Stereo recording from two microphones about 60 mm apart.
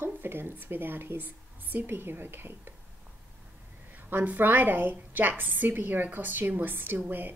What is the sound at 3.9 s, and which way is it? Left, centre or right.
A woman's voice, right.